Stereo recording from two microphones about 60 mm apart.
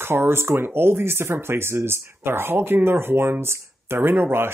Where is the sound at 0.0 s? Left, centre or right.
Right.